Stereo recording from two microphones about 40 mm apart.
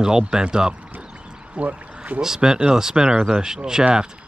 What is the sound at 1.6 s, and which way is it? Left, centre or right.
Speech, right.